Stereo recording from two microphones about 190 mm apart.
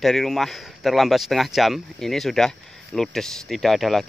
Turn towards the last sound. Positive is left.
turn(degrees=0)  # may be behind; listen again after turning